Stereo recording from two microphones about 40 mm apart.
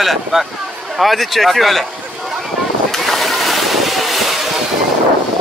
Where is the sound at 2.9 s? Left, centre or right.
Centre.